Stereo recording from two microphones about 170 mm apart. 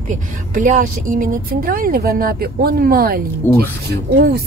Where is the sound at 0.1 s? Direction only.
50° right (ahead or behind).